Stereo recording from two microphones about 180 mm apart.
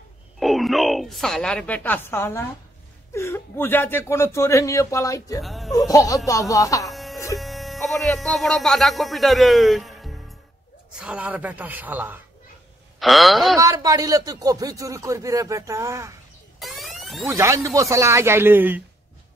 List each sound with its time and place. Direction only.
0.4 s speech: centre (ahead or behind); by 5.4 s 15° left (ahead or behind)
5.4 s music: centre (ahead or behind)
5.7 s speech: 20° left (ahead or behind)
6.9 s music: centre (ahead or behind)
7.3 s speech: centre (ahead or behind)
13.6 s speech: 20° right (ahead or behind)
16.5 s a sound: centre (ahead or behind)
17.3 s speech: 15° right (ahead or behind)